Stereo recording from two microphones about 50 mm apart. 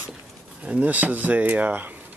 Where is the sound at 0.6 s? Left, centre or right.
Right.